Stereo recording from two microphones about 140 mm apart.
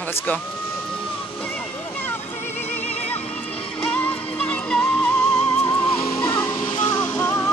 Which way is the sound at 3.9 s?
10° left (ahead or behind).